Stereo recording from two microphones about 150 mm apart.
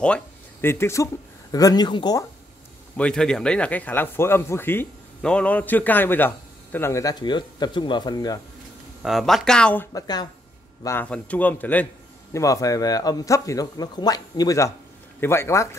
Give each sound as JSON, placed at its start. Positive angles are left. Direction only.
{"t": 0.0, "sound": "speech", "side_deg": 10}
{"t": 3.0, "sound": "speech", "side_deg": 5}
{"t": 9.0, "sound": "speech", "side_deg": 0}
{"t": 9.9, "sound": "a man's voice", "side_deg": 25}